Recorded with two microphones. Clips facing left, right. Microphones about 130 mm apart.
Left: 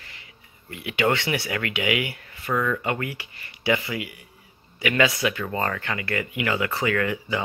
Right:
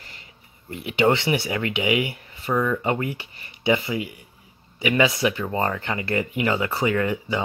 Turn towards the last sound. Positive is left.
turn(degrees=-20)  # may be behind; listen again after turning